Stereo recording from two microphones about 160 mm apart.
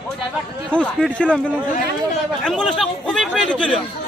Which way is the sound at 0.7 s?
5° left (ahead or behind).